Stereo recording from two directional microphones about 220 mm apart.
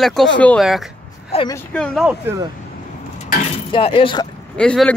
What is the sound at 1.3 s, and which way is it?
Speech, 20° left (ahead or behind).